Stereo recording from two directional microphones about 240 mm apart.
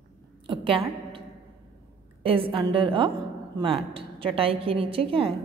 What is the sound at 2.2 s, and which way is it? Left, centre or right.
A woman's voice, right.